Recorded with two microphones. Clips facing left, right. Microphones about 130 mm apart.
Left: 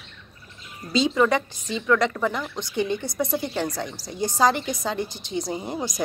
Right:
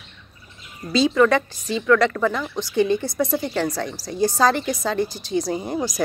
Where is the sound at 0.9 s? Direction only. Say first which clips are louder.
Right 3 dB; 20° left (ahead or behind).